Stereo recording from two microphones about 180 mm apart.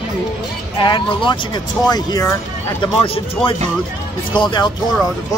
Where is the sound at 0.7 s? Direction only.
25° left (ahead or behind).